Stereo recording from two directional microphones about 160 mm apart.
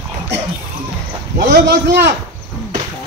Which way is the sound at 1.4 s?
90° right.